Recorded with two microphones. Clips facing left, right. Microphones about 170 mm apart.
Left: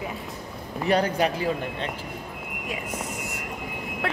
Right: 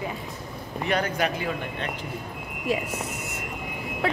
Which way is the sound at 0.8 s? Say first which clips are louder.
Left 3 dB; 35° left (ahead or behind).